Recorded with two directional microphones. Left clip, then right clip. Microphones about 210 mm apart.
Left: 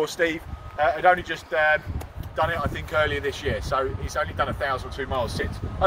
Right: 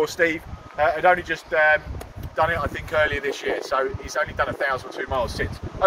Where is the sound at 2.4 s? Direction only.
10° right (ahead or behind).